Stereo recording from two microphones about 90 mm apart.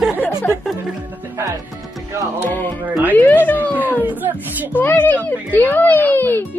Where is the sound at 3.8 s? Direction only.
20° right (ahead or behind).